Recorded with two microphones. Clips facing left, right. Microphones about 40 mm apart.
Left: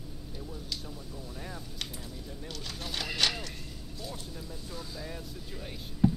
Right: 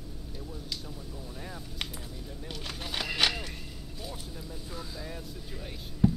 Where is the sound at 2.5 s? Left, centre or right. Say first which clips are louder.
Right 2 dB; centre.